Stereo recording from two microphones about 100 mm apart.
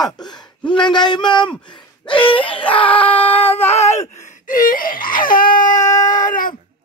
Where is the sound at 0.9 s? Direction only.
50° left (ahead or behind).